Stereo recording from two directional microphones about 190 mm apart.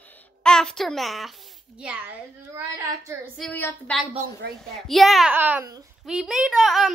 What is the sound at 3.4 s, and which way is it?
A woman's voice, 10° left (ahead or behind).